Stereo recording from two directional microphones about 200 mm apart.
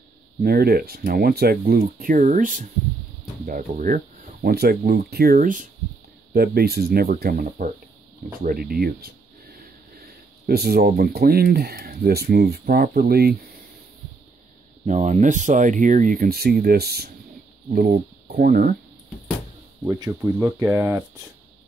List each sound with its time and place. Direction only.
0.4 s speech: 50° right (ahead or behind)
14.9 s speech: 35° right (ahead or behind)
19.8 s speech: 10° right (ahead or behind)